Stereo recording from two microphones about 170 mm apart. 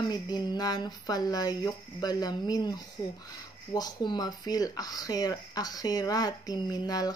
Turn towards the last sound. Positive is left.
turn(degrees=20)  # may be behind; listen again after turning